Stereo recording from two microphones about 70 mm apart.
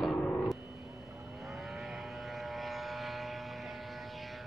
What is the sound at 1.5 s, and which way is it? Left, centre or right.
Vehicle, centre.